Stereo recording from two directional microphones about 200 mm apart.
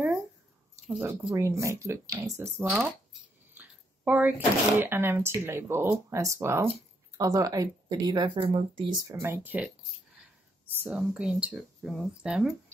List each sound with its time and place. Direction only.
0.8 s speech: 5° right (ahead or behind)
10.8 s speech: 5° right (ahead or behind)